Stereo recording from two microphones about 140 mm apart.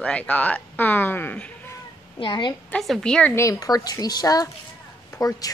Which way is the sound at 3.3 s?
25° left (ahead or behind).